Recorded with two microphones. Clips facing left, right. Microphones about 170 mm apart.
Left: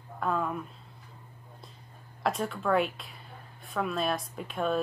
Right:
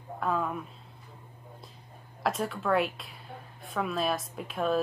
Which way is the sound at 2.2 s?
Centre (ahead or behind).